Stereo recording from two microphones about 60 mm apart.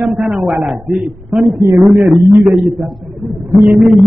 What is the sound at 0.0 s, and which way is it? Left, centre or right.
A man's voice, centre.